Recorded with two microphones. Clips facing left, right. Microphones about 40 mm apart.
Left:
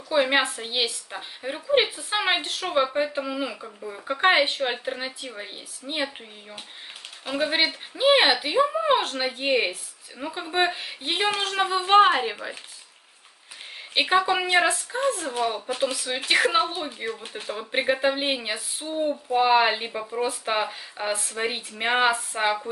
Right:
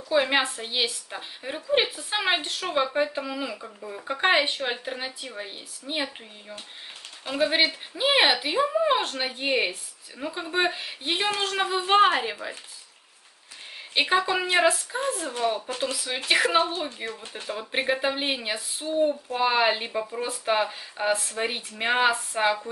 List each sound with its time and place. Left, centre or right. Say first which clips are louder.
0.1 s a woman's voice: left 1 dB; centre
4.6 s a woman's voice: left 2 dB; centre
7.2 s a woman's voice: right 1 dB; centre
13.9 s a woman's voice: left 2 dB; centre
15.7 s speech: left 3 dB; centre
16.0 s a woman's voice: right 1 dB; centre